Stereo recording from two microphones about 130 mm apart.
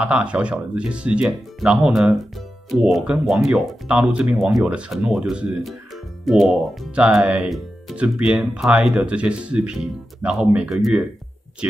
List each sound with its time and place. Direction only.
0.0 s speech: 10° right (ahead or behind)